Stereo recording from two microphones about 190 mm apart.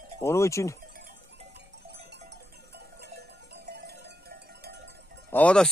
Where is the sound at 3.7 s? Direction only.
60° right (ahead or behind).